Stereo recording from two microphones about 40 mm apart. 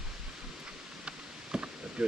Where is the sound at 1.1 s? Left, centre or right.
Right.